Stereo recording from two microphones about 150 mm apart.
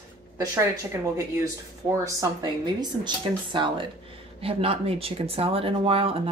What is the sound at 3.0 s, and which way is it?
Speech, 30° right (ahead or behind).